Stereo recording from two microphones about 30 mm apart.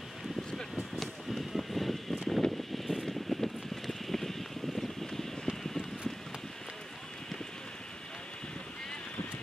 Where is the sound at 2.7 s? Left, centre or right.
Centre.